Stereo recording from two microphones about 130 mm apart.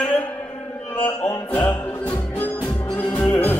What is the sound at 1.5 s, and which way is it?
Music, 15° left (ahead or behind).